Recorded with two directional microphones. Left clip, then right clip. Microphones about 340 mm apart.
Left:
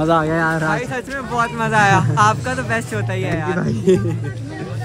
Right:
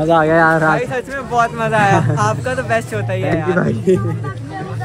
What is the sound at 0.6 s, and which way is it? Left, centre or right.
Speech, centre.